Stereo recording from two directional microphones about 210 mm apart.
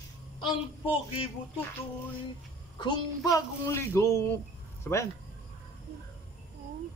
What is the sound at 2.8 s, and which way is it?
Speech, 20° left (ahead or behind).